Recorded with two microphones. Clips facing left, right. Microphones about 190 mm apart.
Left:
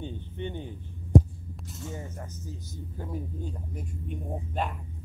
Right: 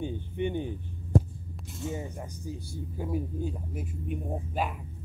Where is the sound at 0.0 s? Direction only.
15° right (ahead or behind).